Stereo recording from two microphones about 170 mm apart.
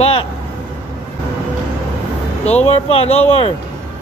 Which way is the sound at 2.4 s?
40° left (ahead or behind).